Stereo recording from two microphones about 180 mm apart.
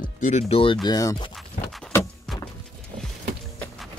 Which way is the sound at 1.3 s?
Centre (ahead or behind).